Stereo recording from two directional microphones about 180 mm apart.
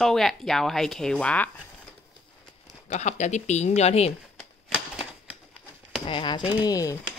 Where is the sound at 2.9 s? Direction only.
40° left (ahead or behind).